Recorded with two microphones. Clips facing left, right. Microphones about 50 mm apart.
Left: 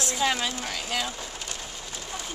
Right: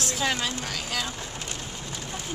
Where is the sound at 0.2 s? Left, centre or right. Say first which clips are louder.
Left 2 dB; centre.